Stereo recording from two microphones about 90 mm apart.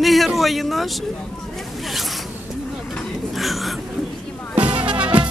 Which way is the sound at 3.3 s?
Centre (ahead or behind).